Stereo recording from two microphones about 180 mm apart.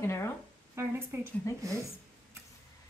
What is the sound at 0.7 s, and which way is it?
A woman's voice, 15° right (ahead or behind).